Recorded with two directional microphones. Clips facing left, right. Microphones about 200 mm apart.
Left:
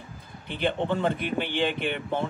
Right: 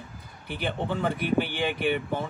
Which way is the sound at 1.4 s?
10° right (ahead or behind).